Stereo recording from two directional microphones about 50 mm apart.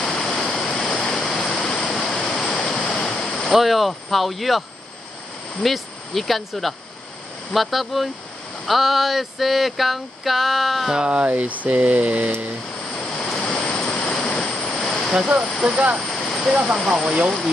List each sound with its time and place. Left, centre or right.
0.1 s waterfall: centre
3.0 s speech: centre
7.5 s a sound: centre
11.0 s speech: right
12.9 s waves: centre
15.1 s speech: centre
16.5 s speech: centre